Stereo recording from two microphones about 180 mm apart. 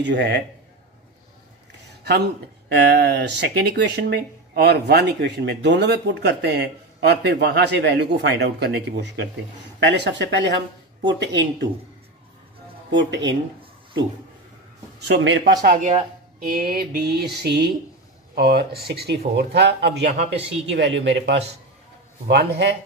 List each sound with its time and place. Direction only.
0.0 s speech: 70° right (ahead or behind)
2.7 s speech: 70° right (ahead or behind)
12.9 s speech: 80° right
15.0 s speech: 80° right
15.6 s speech: 50° right (ahead or behind)
16.7 s speech: 65° right (ahead or behind)
20.1 s speech: 35° right (ahead or behind)
20.6 s speech: 85° right
22.3 s speech: 70° right (ahead or behind)